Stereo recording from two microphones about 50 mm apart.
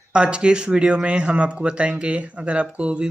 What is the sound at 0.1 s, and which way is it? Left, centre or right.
Speech, right.